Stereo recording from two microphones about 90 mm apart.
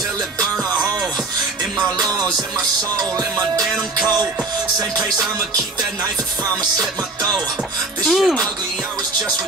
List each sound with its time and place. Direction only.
3.0 s music: 40° right (ahead or behind)
8.0 s speech: centre (ahead or behind)